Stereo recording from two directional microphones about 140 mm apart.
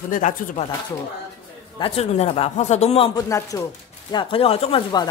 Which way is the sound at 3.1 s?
25° left (ahead or behind).